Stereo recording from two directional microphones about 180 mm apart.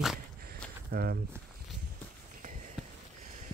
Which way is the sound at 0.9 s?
60° right (ahead or behind).